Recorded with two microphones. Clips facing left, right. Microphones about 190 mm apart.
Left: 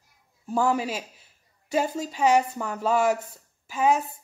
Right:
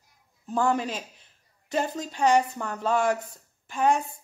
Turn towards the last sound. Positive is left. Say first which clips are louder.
# left 1 dB
turn(degrees=5)  # may be behind; listen again after turning